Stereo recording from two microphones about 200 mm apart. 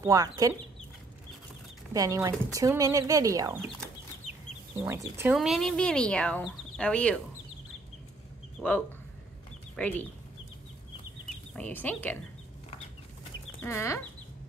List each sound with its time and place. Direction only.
0.0 s speech: 15° right (ahead or behind)
2.0 s speech: 15° right (ahead or behind)
4.7 s speech: 15° right (ahead or behind)
5.3 s speech: centre (ahead or behind)
8.5 s speech: 5° left (ahead or behind)
11.5 s speech: 10° left (ahead or behind)
13.6 s speech: 10° left (ahead or behind)